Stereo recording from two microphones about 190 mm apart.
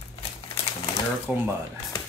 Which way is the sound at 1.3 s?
5° right (ahead or behind).